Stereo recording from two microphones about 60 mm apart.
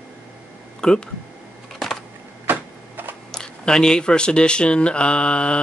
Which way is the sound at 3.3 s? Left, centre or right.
Centre.